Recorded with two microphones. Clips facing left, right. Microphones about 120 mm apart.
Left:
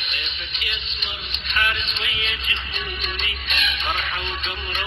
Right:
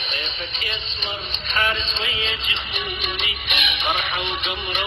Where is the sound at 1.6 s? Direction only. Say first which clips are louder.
Right 2 dB; 30° right (ahead or behind).